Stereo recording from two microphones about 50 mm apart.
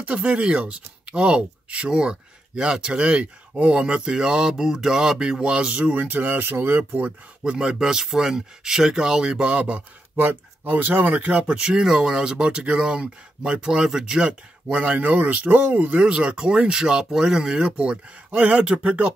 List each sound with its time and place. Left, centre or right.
0.0 s speech: right; by 5.4 s centre
5.4 s speech: right
6.8 s speech: right
7.5 s speech: centre
10.1 s speech: right; by 14.3 s centre
14.7 s speech: right
16.0 s speech: centre
18.3 s speech: right